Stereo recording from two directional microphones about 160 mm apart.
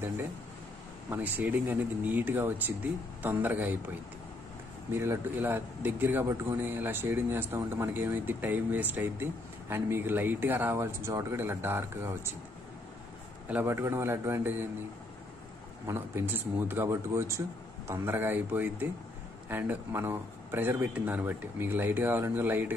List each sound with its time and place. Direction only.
1.1 s speech: 10° right (ahead or behind)
4.9 s speech: 15° right (ahead or behind)
13.5 s speech: 10° right (ahead or behind)
15.9 s speech: 15° right (ahead or behind)